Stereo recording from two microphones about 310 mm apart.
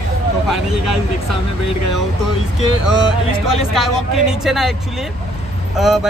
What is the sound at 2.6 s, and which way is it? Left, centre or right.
Speech, left.